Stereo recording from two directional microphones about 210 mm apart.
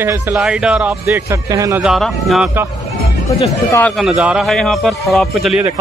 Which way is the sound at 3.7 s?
5° left (ahead or behind).